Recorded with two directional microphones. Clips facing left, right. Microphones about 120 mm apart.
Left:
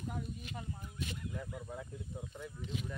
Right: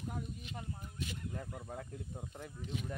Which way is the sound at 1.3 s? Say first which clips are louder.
Left 1 dB; 45° right (ahead or behind).